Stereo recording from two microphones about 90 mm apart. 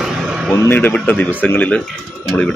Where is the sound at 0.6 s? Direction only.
25° left (ahead or behind).